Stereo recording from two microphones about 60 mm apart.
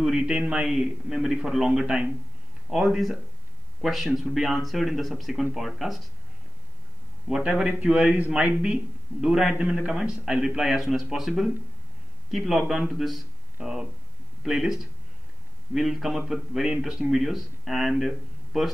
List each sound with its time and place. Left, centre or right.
0.0 s a man's voice: centre
0.7 s speech: centre
7.4 s a man's voice: right; by 18.7 s centre